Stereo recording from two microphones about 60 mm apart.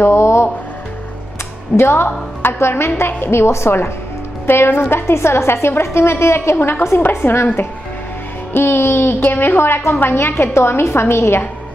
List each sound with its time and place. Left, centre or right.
0.0 s a woman's voice: left
1.8 s a woman's voice: left
8.5 s a woman's voice: left